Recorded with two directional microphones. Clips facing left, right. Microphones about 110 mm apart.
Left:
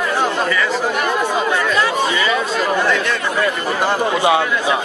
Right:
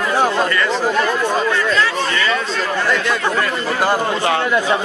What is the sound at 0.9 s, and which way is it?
Speech, 15° left (ahead or behind).